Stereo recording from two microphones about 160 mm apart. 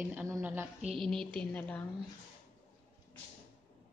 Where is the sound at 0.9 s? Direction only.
5° left (ahead or behind).